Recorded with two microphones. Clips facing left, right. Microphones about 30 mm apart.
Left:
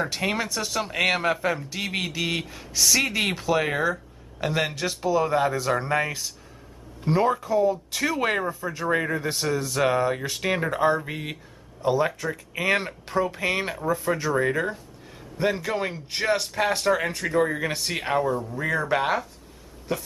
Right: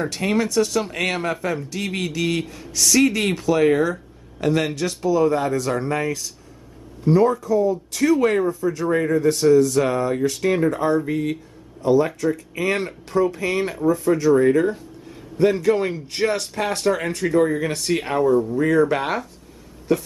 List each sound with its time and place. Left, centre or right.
0.0 s a man's voice: centre